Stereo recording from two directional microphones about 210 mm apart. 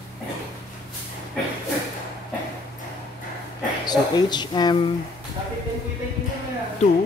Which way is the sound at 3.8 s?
20° left (ahead or behind).